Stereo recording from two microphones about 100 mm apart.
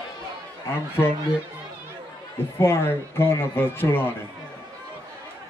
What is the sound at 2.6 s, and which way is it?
Music, 25° left (ahead or behind).